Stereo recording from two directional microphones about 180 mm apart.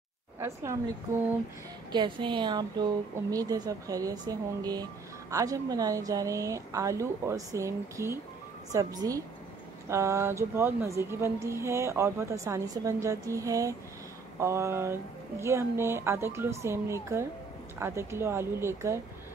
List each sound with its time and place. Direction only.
0.4 s a woman's voice: 15° right (ahead or behind)
1.9 s speech: 25° right (ahead or behind)